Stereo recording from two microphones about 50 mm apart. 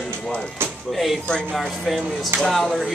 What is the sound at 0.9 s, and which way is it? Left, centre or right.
A man's voice, centre.